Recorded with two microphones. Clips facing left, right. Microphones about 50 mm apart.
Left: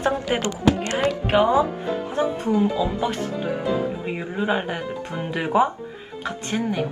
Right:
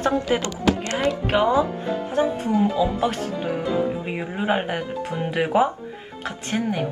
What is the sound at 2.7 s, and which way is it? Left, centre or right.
Speech, right.